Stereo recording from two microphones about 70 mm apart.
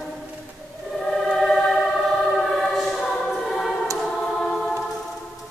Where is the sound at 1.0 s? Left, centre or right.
Centre.